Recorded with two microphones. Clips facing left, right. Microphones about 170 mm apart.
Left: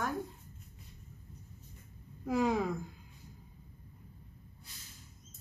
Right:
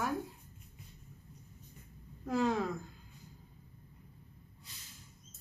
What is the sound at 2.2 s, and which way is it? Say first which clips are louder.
Speech: left 1 dB; 10° left (ahead or behind).